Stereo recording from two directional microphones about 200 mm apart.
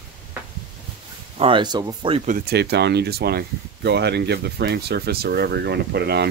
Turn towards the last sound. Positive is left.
turn(degrees=-55)  # may be behind; listen again after turning